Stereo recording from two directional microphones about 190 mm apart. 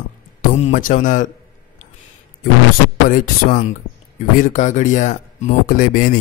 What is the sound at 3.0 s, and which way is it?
Speech, 45° left (ahead or behind).